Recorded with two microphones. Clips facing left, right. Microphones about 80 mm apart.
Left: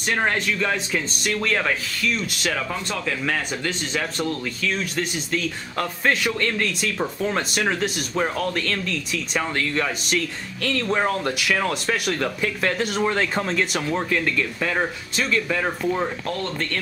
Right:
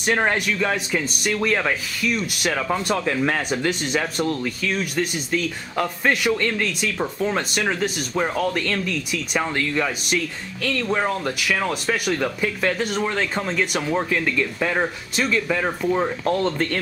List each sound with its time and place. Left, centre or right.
0.0 s speech: centre
2.7 s speech: right
16.3 s speech: right